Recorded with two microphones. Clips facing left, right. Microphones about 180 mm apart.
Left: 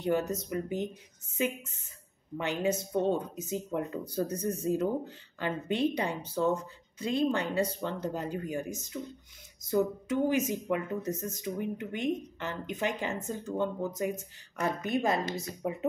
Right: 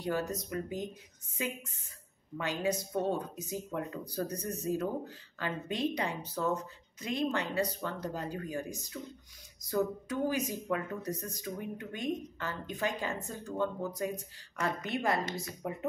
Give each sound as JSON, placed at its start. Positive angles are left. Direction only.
{"t": 0.0, "sound": "speech", "side_deg": 25}